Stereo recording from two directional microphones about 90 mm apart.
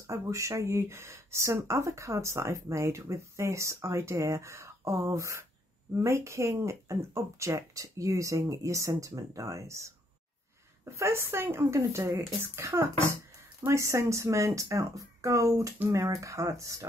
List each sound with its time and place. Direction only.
0.0 s speech: 35° right (ahead or behind)
11.0 s speech: 30° right (ahead or behind)